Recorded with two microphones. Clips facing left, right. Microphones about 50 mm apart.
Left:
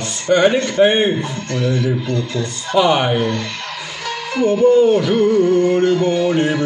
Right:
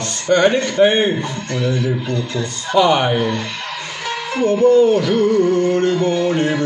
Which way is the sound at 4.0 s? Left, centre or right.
Right.